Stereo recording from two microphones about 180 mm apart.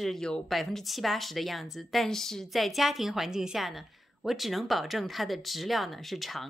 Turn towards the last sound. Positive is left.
turn(degrees=0)  # may be behind; listen again after turning